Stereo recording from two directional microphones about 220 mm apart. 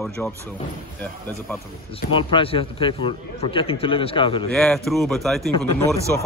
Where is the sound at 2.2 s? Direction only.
25° left (ahead or behind).